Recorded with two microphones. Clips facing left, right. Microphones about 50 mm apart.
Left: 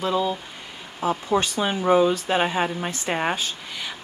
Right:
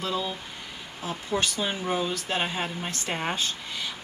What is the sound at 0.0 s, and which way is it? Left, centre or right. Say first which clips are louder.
Speech: left 7 dB; left.